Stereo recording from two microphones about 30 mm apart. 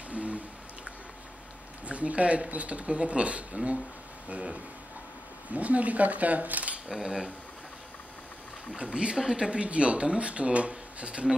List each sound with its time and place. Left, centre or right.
0.1 s a sound: right
1.9 s speech: right
5.5 s speech: right
6.9 s speech: centre
8.7 s speech: right